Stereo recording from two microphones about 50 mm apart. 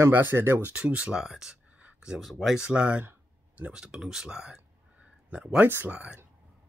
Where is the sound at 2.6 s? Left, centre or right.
Right.